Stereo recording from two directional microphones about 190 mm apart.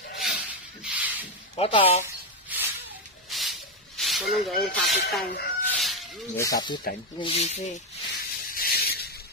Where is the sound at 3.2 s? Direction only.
Centre (ahead or behind).